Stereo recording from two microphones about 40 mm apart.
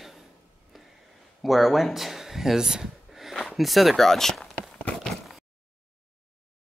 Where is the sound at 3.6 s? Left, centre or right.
Centre.